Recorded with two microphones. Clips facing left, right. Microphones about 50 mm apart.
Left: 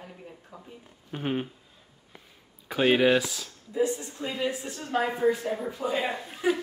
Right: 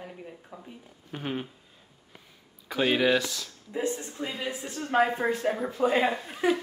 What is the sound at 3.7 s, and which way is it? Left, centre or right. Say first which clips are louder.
Speech: left 3 dB; right.